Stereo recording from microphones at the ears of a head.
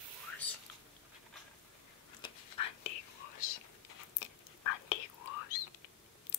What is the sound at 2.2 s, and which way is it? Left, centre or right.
Whispering, left.